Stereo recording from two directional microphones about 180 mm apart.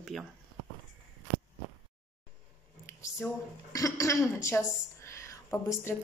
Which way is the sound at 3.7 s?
20° left (ahead or behind).